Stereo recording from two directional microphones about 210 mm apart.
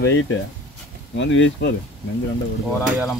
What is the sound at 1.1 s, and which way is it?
Speech, 60° left (ahead or behind).